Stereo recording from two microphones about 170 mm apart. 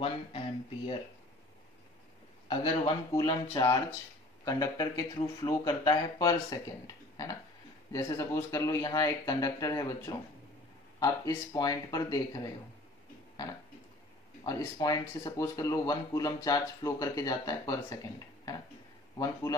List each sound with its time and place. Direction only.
0.0 s speech: 30° left (ahead or behind)
2.4 s speech: 25° left (ahead or behind)
7.9 s speech: 20° left (ahead or behind)
14.4 s speech: 20° left (ahead or behind)
19.1 s speech: 20° left (ahead or behind)